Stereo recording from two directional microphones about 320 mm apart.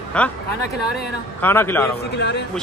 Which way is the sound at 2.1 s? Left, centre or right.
Left.